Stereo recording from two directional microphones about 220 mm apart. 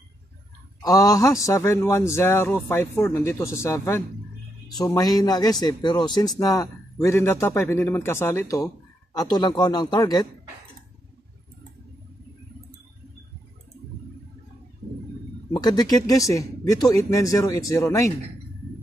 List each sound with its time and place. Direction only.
0.8 s a man's voice: 15° left (ahead or behind)
15.5 s a man's voice: 15° left (ahead or behind)